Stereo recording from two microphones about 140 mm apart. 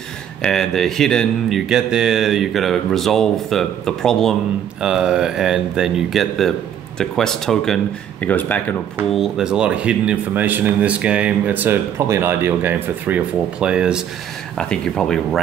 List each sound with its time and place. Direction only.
0.4 s speech: 5° left (ahead or behind)
9.1 s speech: 5° right (ahead or behind)
14.6 s speech: 5° left (ahead or behind)